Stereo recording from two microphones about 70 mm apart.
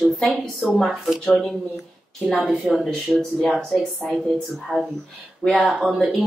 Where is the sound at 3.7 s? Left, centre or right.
Centre.